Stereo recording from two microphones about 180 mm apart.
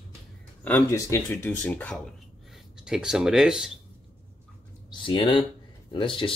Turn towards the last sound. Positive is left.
turn(degrees=25)  # may be behind; listen again after turning